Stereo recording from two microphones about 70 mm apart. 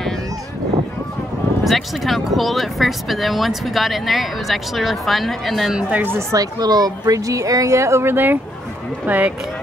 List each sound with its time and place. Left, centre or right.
1.6 s speech: centre
5.8 s speech: centre
6.3 s speech: right